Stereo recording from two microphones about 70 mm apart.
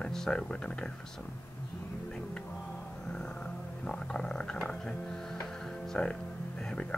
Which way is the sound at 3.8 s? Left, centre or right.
Centre.